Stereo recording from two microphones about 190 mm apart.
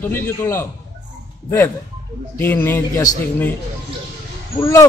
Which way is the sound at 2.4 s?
10° left (ahead or behind).